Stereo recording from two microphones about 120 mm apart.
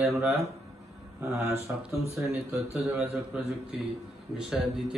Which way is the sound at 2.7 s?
10° right (ahead or behind).